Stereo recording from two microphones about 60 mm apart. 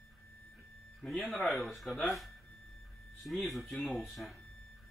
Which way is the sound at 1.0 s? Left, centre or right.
Centre.